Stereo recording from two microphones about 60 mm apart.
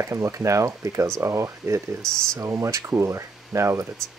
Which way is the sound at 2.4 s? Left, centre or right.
Right.